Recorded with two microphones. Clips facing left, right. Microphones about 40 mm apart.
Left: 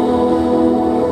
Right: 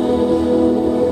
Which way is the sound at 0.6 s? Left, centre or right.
Left.